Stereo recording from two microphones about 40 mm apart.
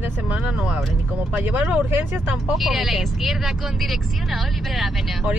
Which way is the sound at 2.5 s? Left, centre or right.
Centre.